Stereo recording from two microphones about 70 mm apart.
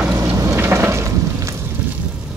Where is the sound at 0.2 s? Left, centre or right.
Right.